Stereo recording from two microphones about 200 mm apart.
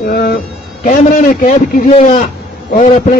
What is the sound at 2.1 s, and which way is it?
A man's voice, 40° left (ahead or behind).